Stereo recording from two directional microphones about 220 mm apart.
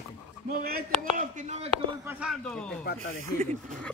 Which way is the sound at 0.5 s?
40° right (ahead or behind).